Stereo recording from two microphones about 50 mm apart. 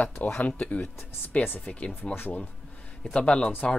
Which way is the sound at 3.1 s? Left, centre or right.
Centre.